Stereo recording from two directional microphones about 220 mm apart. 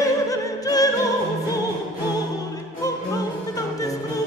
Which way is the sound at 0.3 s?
15° left (ahead or behind).